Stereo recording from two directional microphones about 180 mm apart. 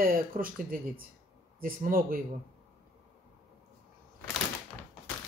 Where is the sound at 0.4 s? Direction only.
50° right (ahead or behind).